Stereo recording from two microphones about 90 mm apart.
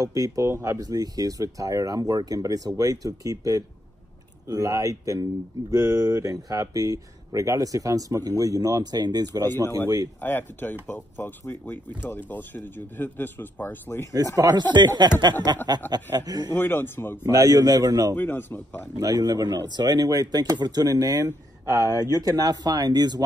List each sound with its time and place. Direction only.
0.0 s speech: 40° right (ahead or behind)
0.7 s speech: 45° right (ahead or behind)
10.2 s speech: 20° left (ahead or behind)
14.1 s speech: 40° right (ahead or behind)
16.5 s speech: 25° left (ahead or behind)
17.4 s speech: 45° right (ahead or behind)
18.1 s speech: 20° left (ahead or behind)
18.9 s speech: 40° right (ahead or behind)
21.8 s speech: 45° right (ahead or behind)